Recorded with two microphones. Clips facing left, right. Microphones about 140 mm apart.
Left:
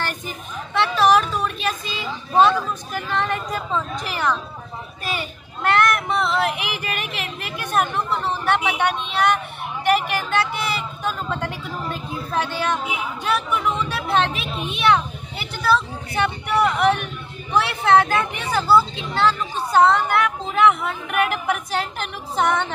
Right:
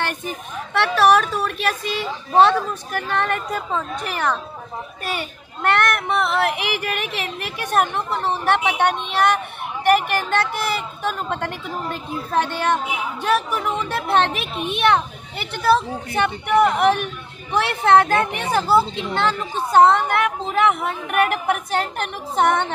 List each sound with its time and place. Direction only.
0.7 s speech: 65° right (ahead or behind)
5.6 s speech: 55° right (ahead or behind)